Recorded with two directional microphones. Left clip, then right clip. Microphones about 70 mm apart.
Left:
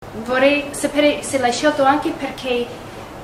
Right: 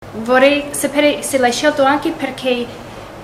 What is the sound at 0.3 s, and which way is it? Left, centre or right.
A woman's voice, centre.